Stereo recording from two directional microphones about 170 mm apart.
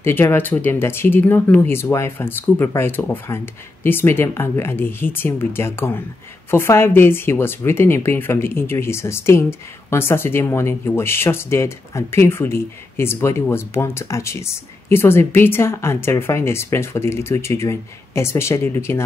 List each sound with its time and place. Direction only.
0.0 s speech: 15° left (ahead or behind)